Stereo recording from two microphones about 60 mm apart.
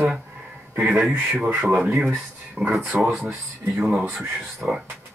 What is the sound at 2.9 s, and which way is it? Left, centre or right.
Speech, centre.